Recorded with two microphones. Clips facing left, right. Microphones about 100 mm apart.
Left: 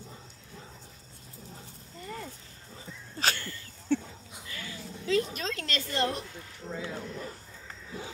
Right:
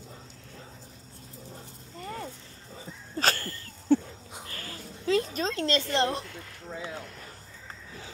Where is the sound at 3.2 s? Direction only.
40° right (ahead or behind).